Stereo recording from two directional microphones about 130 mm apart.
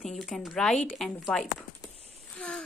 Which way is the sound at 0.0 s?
Centre (ahead or behind).